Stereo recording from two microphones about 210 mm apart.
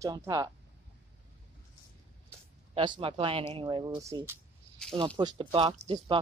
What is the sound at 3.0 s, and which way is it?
Speech, 25° right (ahead or behind).